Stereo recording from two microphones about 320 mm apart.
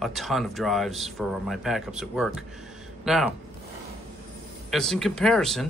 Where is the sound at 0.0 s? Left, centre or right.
Centre.